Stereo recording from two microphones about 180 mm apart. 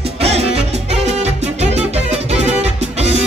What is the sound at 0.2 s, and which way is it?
Music, 35° right (ahead or behind).